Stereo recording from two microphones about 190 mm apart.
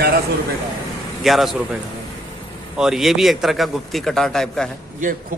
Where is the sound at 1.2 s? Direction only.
Centre (ahead or behind).